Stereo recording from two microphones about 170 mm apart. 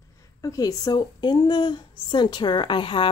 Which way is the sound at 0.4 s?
20° left (ahead or behind).